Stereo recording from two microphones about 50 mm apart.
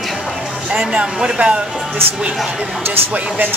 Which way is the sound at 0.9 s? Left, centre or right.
Centre.